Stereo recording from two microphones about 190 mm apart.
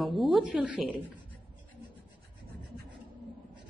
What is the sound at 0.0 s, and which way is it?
Speech, centre (ahead or behind).